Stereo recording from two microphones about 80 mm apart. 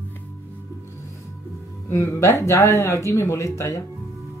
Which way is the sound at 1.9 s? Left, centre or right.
Left.